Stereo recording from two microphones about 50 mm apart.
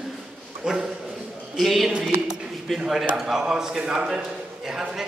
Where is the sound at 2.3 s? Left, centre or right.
Centre.